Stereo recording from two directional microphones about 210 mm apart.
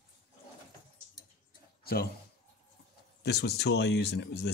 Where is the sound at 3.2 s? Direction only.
50° left (ahead or behind).